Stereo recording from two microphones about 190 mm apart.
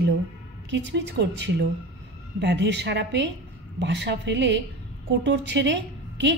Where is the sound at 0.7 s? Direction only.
65° right (ahead or behind).